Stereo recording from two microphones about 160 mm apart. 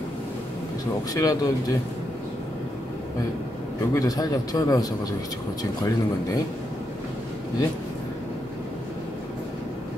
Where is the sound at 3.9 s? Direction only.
20° left (ahead or behind).